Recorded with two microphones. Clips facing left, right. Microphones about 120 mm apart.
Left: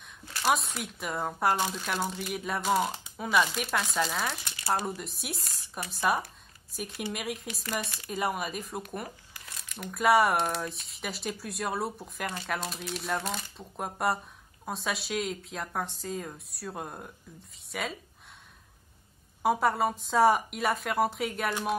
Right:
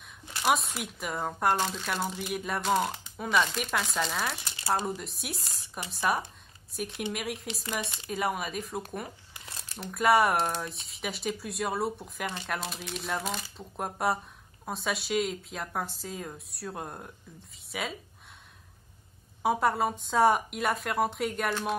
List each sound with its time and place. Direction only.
0.2 s a sound: 20° right (ahead or behind)
0.5 s speech: centre (ahead or behind)
7.8 s speech: 25° right (ahead or behind)
8.1 s speech: centre (ahead or behind)
9.3 s crumpling: 30° right (ahead or behind)
9.8 s speech: centre (ahead or behind)
19.4 s speech: centre (ahead or behind)